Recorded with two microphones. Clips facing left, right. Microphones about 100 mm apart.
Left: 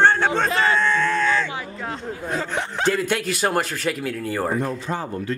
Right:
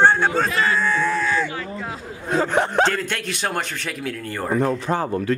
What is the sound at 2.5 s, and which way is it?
Speech, 60° right (ahead or behind).